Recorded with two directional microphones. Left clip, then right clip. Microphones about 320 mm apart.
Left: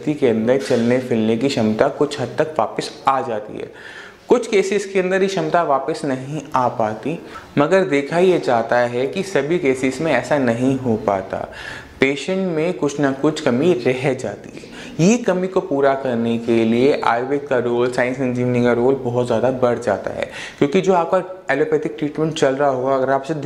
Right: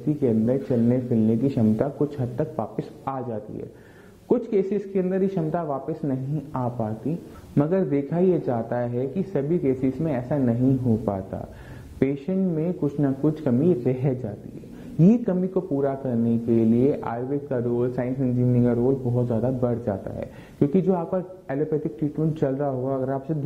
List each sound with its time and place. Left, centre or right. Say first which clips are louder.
0.2 s speech: left 8 dB; centre